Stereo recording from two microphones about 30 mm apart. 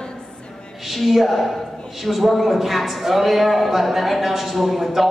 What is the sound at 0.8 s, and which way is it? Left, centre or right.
A man's voice, centre.